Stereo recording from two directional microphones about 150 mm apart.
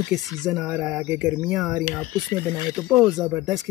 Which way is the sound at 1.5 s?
Centre (ahead or behind).